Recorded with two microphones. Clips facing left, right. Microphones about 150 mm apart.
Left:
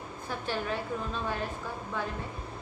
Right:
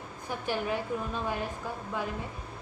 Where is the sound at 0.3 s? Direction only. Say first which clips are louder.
Right 2 dB; 15° right (ahead or behind).